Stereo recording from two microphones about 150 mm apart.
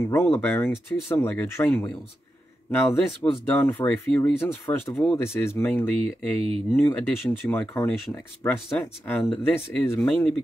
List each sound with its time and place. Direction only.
0.0 s speech: 15° left (ahead or behind)